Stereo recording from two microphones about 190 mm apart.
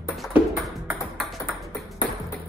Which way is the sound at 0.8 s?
Centre (ahead or behind).